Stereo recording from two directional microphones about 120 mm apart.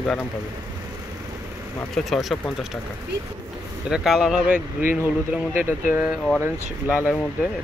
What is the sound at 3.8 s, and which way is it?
Speech, 5° right (ahead or behind).